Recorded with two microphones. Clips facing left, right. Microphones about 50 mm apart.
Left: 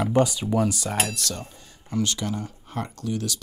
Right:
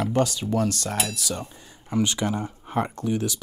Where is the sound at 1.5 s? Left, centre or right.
Centre.